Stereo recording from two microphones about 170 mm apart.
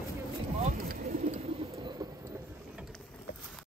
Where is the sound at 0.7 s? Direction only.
60° right (ahead or behind); by 1.8 s 35° right (ahead or behind).